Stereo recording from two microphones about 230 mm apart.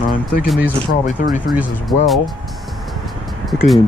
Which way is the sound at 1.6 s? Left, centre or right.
Centre.